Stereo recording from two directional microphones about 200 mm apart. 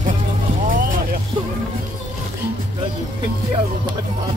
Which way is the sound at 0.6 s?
45° right (ahead or behind).